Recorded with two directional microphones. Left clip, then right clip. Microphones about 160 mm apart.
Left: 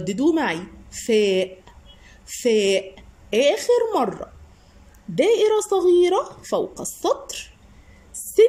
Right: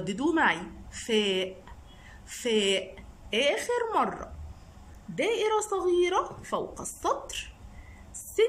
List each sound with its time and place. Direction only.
0.0 s a woman's voice: 20° left (ahead or behind)